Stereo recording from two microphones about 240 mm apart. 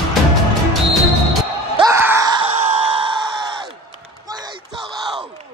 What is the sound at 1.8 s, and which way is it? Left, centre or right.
Screaming, centre.